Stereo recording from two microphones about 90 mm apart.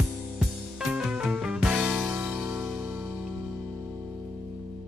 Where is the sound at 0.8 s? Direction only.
5° right (ahead or behind).